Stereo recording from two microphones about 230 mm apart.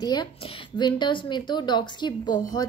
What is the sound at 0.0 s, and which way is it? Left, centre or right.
A woman's voice, centre.